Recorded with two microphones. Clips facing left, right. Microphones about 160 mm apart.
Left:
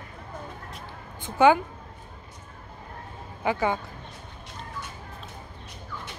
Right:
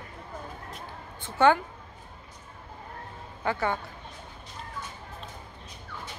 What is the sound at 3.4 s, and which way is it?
Speech, 15° left (ahead or behind).